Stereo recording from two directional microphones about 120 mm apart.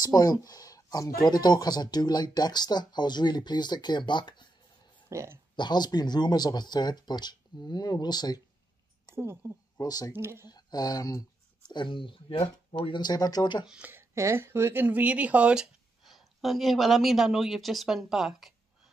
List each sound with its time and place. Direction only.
0.0 s speech: 35° left (ahead or behind)
5.1 s speech: 25° right (ahead or behind)
5.6 s speech: 35° left (ahead or behind)
9.1 s a woman's voice: 20° right (ahead or behind)
9.8 s speech: 30° left (ahead or behind)
10.1 s speech: 20° right (ahead or behind)
10.4 s speech: 35° left (ahead or behind); by 13.0 s 50° left (ahead or behind)
13.0 s speech: 35° left (ahead or behind)
13.7 s a woman's voice: 15° right (ahead or behind)